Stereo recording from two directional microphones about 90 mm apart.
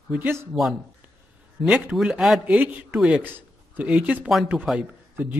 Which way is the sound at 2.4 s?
15° right (ahead or behind).